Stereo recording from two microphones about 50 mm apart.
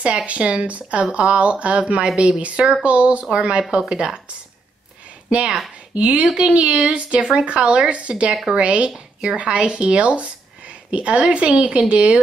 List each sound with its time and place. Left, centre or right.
0.0 s speech: right
5.3 s speech: centre